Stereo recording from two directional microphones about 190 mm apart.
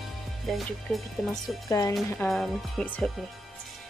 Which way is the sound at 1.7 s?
15° left (ahead or behind).